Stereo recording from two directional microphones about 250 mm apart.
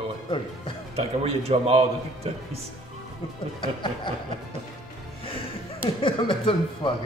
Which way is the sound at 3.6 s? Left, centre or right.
Centre.